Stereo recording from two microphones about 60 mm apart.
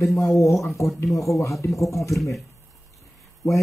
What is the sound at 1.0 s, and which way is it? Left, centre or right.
Speech, left.